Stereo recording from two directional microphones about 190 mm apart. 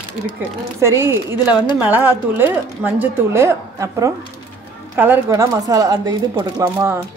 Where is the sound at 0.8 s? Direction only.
15° right (ahead or behind).